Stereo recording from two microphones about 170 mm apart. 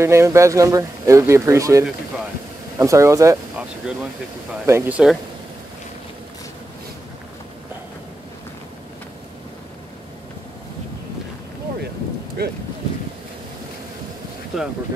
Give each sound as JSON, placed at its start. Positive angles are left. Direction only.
{"t": 0.0, "sound": "a man's voice", "side_deg": -15}
{"t": 3.8, "sound": "a man's voice", "side_deg": -5}
{"t": 12.4, "sound": "speech", "side_deg": -65}
{"t": 14.5, "sound": "speech", "side_deg": 0}